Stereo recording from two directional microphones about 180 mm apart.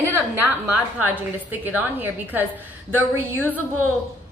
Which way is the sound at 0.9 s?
10° right (ahead or behind).